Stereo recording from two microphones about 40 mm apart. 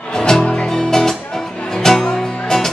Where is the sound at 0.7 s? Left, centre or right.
Centre.